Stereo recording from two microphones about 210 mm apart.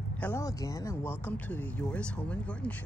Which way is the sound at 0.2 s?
15° left (ahead or behind).